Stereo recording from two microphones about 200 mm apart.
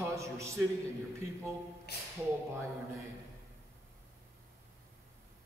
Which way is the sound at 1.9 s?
55° left (ahead or behind).